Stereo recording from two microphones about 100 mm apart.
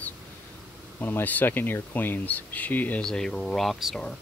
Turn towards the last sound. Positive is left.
turn(degrees=5)  # may be behind; listen again after turning